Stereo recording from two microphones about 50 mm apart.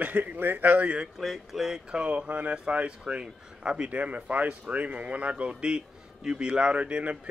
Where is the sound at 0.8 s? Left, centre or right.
Right.